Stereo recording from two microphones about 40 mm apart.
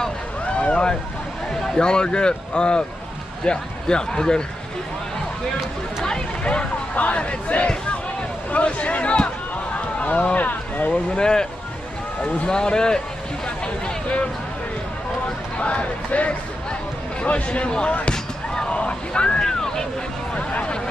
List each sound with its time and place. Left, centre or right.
0.6 s boat: left
1.5 s speech: centre
6.4 s a sound: left
10.9 s speech: left
12.4 s speech: centre
15.6 s speech: left
18.1 s a sound: centre
19.4 s vehicle: centre
20.3 s a sound: left